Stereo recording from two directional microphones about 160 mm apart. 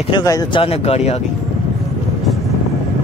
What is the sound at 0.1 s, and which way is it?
Speech, 25° left (ahead or behind).